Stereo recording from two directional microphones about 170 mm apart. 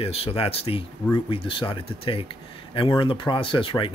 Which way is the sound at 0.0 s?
35° left (ahead or behind).